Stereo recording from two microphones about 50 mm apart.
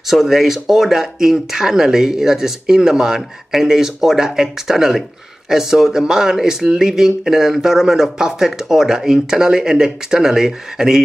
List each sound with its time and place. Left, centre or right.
0.1 s speech: centre